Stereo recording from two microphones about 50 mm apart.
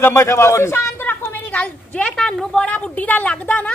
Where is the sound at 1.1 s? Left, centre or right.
Left.